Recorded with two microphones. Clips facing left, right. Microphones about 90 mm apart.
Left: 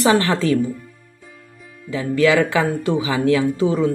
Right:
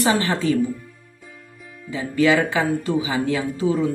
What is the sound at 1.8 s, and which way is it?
Speech, 90° left.